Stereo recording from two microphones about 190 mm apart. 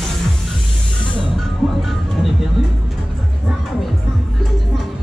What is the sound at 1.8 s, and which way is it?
Music, centre (ahead or behind).